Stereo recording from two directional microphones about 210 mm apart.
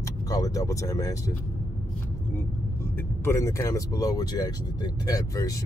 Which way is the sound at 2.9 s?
10° left (ahead or behind).